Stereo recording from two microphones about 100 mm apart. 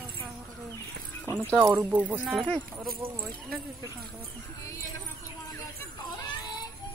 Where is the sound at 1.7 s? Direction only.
15° right (ahead or behind).